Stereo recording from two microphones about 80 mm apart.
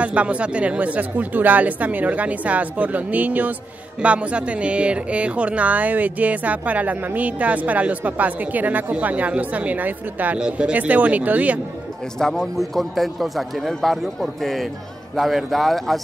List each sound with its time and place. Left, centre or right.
0.0 s speech: centre
12.2 s a man's voice: centre